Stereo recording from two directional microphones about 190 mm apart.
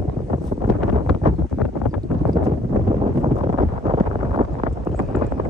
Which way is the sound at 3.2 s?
30° right (ahead or behind).